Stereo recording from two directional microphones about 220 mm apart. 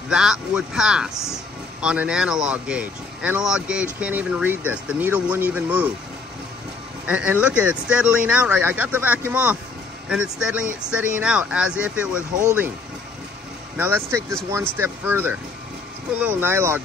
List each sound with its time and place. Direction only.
0.1 s speech: 5° right (ahead or behind)
7.1 s speech: 5° right (ahead or behind)
13.7 s speech: 10° right (ahead or behind)